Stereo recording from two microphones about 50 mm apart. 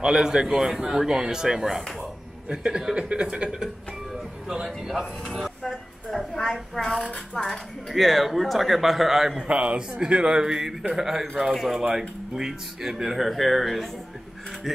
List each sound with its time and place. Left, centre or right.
0.0 s a man's voice: centre
2.0 s speech: right
4.6 s a sound: centre
6.4 s a woman's voice: centre
6.8 s a woman's voice: centre
9.4 s a man's voice: right; by 13.8 s centre